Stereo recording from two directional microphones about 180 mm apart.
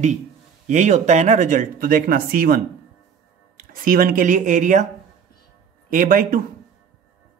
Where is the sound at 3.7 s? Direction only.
50° right (ahead or behind).